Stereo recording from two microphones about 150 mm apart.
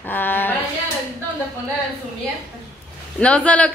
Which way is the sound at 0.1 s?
15° left (ahead or behind).